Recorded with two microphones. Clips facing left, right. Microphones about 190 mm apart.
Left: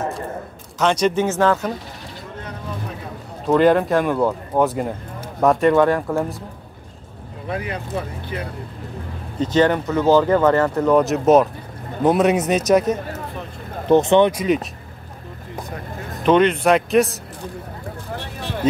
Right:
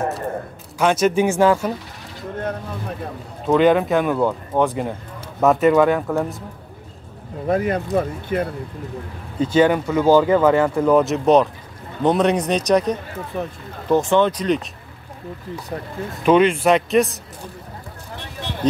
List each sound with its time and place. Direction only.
0.7 s speech: 5° right (ahead or behind)
3.4 s speech: centre (ahead or behind)
7.4 s speech: 45° right (ahead or behind)
9.4 s speech: 10° right (ahead or behind)
13.4 s speech: 50° right (ahead or behind)
13.8 s speech: 20° left (ahead or behind)
16.3 s speech: 5° right (ahead or behind)